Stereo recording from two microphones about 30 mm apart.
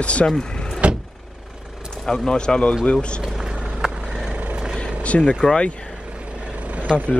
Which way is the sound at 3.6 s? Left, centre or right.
Centre.